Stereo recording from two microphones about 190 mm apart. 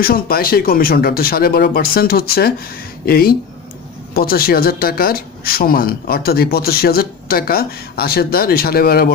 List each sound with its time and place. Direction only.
0.0 s speech: 50° left (ahead or behind)